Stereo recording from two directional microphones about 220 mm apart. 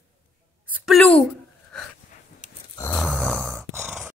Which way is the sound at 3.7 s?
10° right (ahead or behind).